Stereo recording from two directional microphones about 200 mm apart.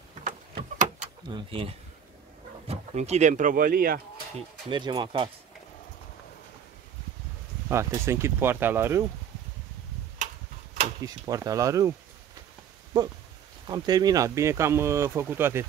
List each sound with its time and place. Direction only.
0.2 s a sound: 40° right (ahead or behind)
1.3 s speech: 25° right (ahead or behind); by 4.0 s 50° right (ahead or behind)
4.6 s speech: 25° right (ahead or behind)
7.7 s speech: 15° right (ahead or behind)
11.0 s speech: 15° right (ahead or behind)
12.9 s speech: 20° right (ahead or behind)